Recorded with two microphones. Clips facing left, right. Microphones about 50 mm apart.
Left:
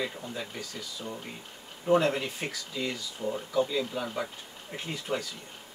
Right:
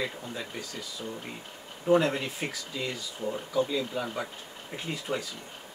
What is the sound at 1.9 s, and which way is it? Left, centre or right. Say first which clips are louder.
Speech: right 1 dB; centre.